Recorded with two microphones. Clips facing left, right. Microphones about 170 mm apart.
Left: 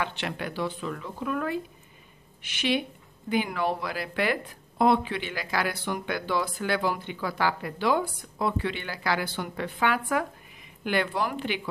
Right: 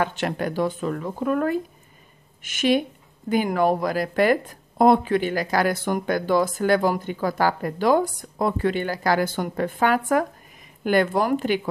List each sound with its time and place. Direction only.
0.0 s speech: 45° right (ahead or behind)